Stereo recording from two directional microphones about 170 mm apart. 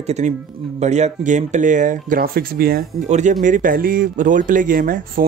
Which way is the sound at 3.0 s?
45° right (ahead or behind).